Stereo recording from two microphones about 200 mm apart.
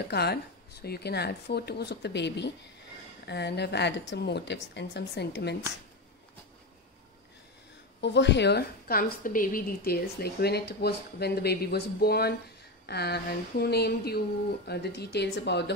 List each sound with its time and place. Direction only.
0.1 s a woman's voice: 55° left (ahead or behind)
8.0 s a woman's voice: 60° left (ahead or behind)